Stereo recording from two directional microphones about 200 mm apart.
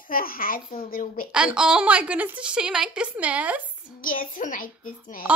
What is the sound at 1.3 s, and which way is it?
A woman's voice, 5° right (ahead or behind).